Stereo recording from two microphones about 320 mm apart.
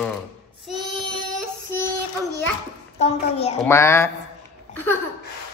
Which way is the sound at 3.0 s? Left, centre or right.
Centre.